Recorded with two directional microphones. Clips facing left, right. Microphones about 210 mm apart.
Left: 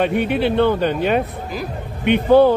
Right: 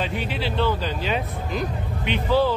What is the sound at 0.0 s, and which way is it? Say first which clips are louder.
A man's voice: left 9 dB; 60° left (ahead or behind).